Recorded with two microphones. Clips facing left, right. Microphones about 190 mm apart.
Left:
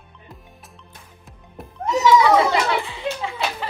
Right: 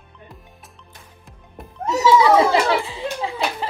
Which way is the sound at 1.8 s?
35° right (ahead or behind).